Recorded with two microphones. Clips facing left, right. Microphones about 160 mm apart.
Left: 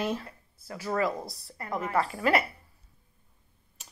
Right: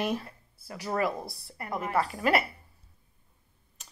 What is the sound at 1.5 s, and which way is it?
Speech, 15° right (ahead or behind).